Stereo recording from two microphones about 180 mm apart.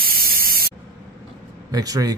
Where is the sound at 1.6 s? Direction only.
20° right (ahead or behind).